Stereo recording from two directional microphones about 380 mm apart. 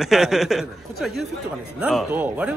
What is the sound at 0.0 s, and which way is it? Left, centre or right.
Speech, centre.